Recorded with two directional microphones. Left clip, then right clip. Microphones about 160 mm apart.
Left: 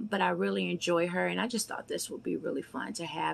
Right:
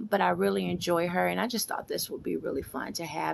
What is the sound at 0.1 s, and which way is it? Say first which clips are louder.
Speech: right 4 dB; 30° right (ahead or behind).